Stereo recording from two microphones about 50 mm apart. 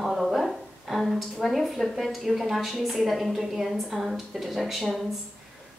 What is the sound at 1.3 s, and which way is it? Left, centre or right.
A woman's voice, centre.